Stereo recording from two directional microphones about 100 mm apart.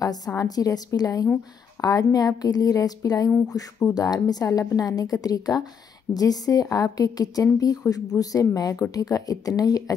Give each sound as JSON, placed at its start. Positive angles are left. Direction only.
{"t": 0.0, "sound": "a woman's voice", "side_deg": 40}